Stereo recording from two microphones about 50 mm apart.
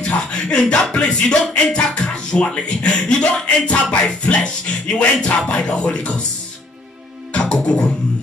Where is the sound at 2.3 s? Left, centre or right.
Left.